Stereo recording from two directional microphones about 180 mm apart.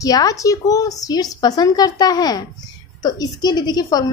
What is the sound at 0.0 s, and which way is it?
A woman's voice, 20° left (ahead or behind).